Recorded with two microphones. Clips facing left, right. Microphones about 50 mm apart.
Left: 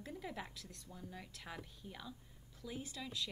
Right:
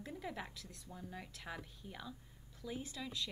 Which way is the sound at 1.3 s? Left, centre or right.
Centre.